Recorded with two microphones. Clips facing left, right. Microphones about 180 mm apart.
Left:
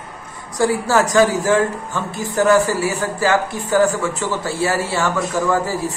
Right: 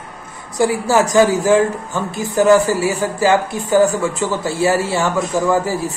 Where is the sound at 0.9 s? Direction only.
15° right (ahead or behind).